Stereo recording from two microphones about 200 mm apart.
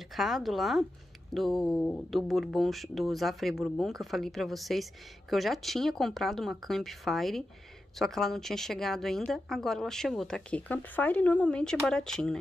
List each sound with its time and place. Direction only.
0.1 s a woman's voice: centre (ahead or behind)